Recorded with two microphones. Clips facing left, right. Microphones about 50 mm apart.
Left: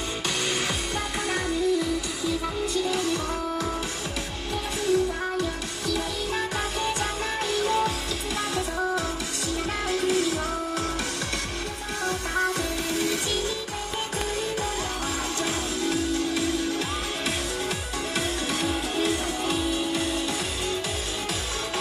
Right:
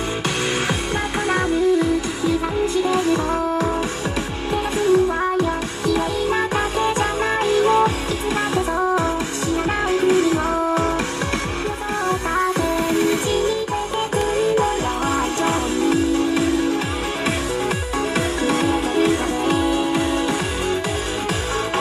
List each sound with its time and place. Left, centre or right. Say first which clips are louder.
1.3 s music: right 7 dB; right
4.7 s music: right 7 dB; right
9.8 s music: right 8 dB; right
12.1 s music: right 5 dB; right
18.1 s music: right 7 dB; right